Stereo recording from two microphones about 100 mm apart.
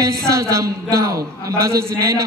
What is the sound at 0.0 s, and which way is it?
Speech, 30° right (ahead or behind).